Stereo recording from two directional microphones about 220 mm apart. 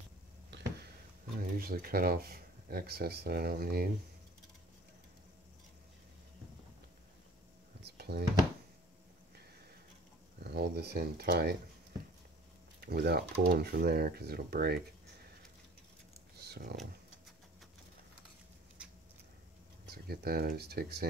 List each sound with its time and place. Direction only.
0.5 s a sound: 50° right (ahead or behind)
1.4 s speech: 40° right (ahead or behind)
7.8 s a sound: 45° right (ahead or behind)
10.4 s speech: 45° right (ahead or behind)
12.8 s speech: 45° right (ahead or behind)
16.3 s computer keyboard: 45° right (ahead or behind)
19.9 s speech: 45° right (ahead or behind)